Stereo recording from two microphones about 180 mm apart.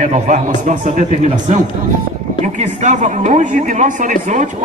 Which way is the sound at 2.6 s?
40° right (ahead or behind).